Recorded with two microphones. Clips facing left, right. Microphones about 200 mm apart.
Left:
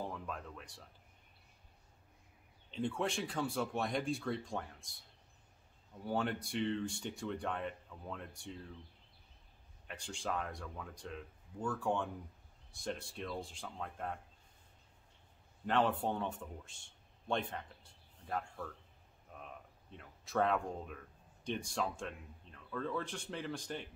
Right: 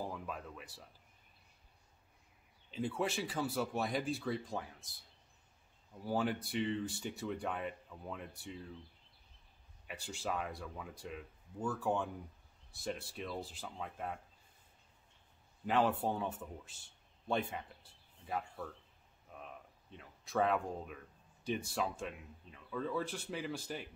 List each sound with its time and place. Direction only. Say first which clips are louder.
0.0 s speech: even; 5° right (ahead or behind)
2.7 s speech: even; 5° right (ahead or behind)
6.0 s speech: right 1 dB; 5° right (ahead or behind)
9.8 s speech: right 1 dB; 5° right (ahead or behind)
15.6 s a man's voice: right 1 dB; 5° right (ahead or behind)